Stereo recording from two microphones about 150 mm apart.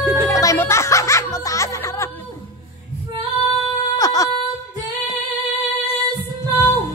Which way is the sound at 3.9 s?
25° left (ahead or behind).